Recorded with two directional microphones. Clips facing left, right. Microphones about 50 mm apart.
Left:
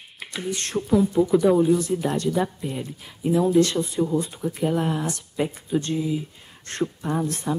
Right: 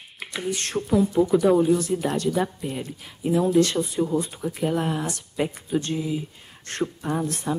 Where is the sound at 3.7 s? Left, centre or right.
Centre.